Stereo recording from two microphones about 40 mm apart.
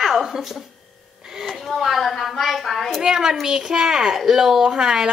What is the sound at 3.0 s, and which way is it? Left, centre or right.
A woman's voice, centre.